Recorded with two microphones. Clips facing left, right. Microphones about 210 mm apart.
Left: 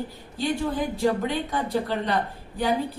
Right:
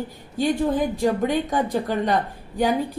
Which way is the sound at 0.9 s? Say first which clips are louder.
Right 3 dB; 45° right (ahead or behind).